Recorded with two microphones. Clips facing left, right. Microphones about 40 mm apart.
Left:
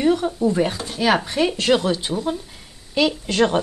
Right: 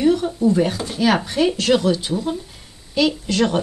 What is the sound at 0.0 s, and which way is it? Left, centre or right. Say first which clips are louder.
Speech: right 1 dB; centre.